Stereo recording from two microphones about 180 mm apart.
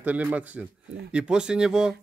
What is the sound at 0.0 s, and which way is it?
A man's voice, 10° right (ahead or behind).